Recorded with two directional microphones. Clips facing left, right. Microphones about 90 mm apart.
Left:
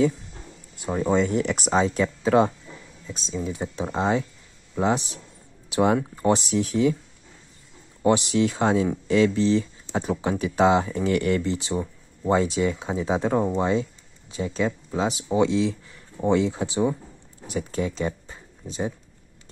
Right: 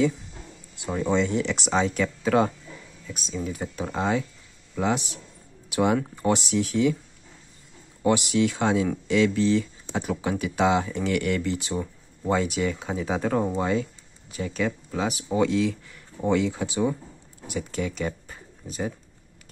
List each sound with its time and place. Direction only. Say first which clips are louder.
0.7 s speech: left 2 dB; 35° left (ahead or behind)
8.0 s speech: left 2 dB; 35° left (ahead or behind)